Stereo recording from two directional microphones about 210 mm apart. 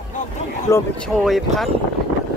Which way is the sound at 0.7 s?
15° left (ahead or behind).